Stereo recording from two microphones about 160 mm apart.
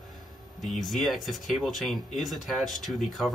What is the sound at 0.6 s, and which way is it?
Speech, centre (ahead or behind).